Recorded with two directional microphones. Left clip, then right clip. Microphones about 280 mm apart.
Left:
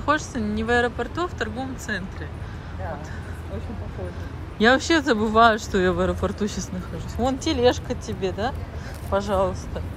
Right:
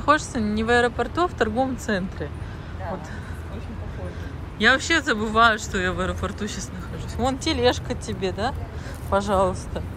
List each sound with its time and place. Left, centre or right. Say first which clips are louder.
0.0 s speech: right 3 dB; centre
4.6 s speech: even; centre